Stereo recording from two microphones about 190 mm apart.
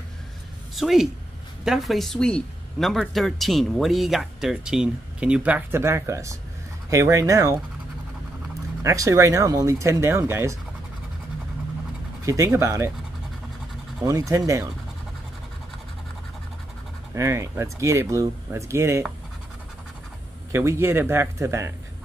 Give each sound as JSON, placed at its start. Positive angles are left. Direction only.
{"t": 0.7, "sound": "speech", "side_deg": 0}
{"t": 8.8, "sound": "speech", "side_deg": -15}
{"t": 12.3, "sound": "speech", "side_deg": -15}
{"t": 14.0, "sound": "speech", "side_deg": -15}
{"t": 17.1, "sound": "speech", "side_deg": -15}
{"t": 20.5, "sound": "speech", "side_deg": -15}